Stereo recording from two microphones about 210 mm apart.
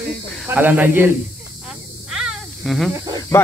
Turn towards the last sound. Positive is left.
turn(degrees=15)  # may be behind; listen again after turning